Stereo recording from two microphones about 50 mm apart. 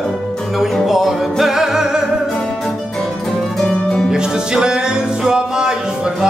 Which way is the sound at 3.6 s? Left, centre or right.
Centre.